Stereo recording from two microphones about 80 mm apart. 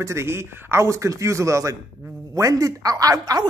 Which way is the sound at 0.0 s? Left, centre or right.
Right.